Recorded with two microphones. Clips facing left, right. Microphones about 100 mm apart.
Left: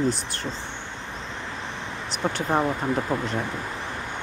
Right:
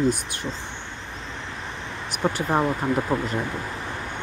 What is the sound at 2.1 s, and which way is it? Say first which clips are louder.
Speech: right 1 dB; 5° right (ahead or behind).